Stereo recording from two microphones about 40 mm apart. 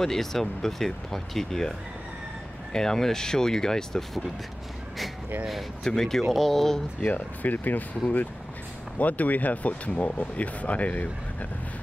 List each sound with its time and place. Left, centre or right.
0.0 s speech: centre
2.7 s speech: centre
5.9 s speech: centre
7.0 s speech: left
8.9 s speech: left